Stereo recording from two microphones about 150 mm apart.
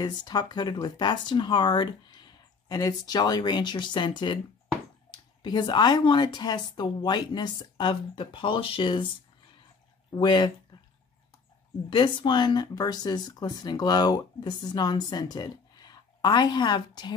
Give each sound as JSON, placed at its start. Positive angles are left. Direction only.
{"t": 0.0, "sound": "speech", "side_deg": 30}
{"t": 10.1, "sound": "speech", "side_deg": 30}
{"t": 11.9, "sound": "speech", "side_deg": 30}